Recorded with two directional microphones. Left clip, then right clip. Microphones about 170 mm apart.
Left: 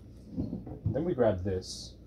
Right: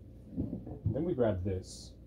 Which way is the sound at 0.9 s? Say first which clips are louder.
Left 4 dB; 10° left (ahead or behind).